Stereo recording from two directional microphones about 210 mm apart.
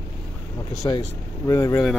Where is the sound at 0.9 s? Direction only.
15° left (ahead or behind).